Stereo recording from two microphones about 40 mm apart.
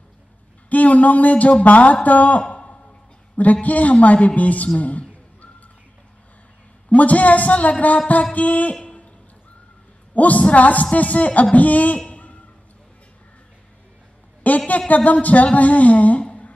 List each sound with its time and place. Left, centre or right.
0.7 s speech: left
2.5 s a sound: left
3.6 s speech: left
6.9 s speech: left
10.1 s speech: left
12.1 s a sound: left
14.4 s speech: left